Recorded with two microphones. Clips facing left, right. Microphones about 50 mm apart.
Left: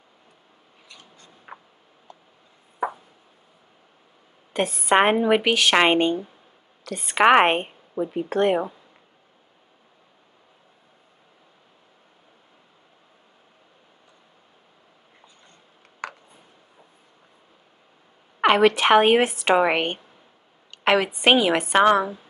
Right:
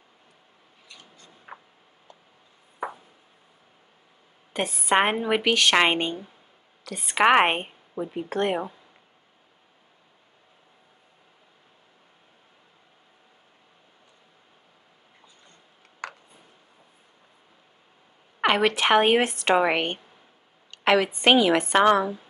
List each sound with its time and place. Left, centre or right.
4.6 s a woman's voice: centre
18.4 s a woman's voice: centre